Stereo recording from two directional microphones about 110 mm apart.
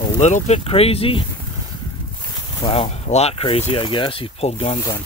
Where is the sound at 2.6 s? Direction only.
50° left (ahead or behind).